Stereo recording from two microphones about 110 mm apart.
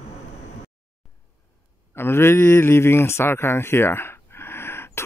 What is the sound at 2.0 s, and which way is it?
A man's voice, 20° left (ahead or behind).